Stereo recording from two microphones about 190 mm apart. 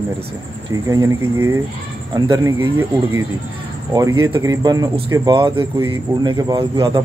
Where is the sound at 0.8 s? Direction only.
15° right (ahead or behind).